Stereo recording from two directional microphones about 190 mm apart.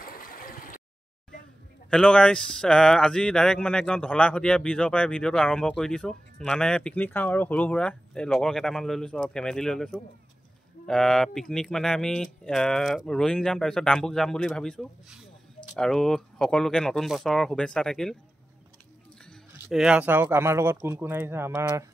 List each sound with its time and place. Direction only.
0.0 s a sound: 50° left (ahead or behind)
1.9 s speech: 5° left (ahead or behind)
19.6 s speech: 5° right (ahead or behind)